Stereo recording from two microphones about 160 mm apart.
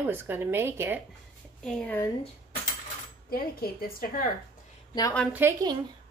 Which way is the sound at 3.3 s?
70° left (ahead or behind).